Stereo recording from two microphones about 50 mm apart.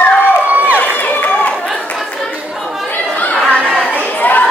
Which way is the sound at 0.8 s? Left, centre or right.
Left.